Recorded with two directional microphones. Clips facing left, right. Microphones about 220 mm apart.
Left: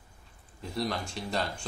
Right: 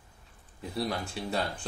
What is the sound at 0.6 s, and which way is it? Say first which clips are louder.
Speech: even; 5° right (ahead or behind).